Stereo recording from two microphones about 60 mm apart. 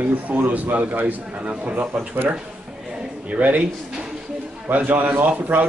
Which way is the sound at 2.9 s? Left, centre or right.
Centre.